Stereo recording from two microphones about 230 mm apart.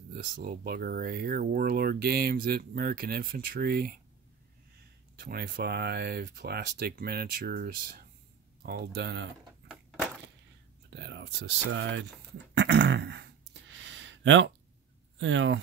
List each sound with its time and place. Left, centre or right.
0.1 s speech: right
5.2 s speech: right
9.7 s a sound: centre
10.9 s speech: right
12.5 s throat clearing: right
15.1 s speech: right